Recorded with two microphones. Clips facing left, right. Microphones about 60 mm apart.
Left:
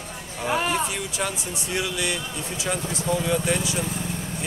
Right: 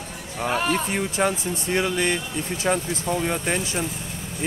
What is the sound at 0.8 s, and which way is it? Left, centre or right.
Speech, right.